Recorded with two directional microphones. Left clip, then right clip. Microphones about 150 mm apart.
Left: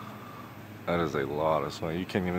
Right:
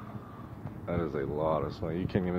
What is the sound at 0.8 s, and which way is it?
Speech, 45° left (ahead or behind).